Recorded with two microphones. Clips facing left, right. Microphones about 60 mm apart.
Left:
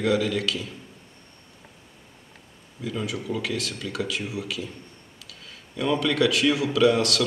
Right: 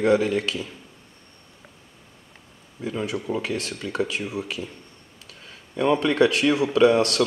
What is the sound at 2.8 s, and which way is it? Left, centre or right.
Speech, right.